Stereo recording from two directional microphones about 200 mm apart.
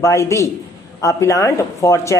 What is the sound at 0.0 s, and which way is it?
A man's voice, 15° left (ahead or behind).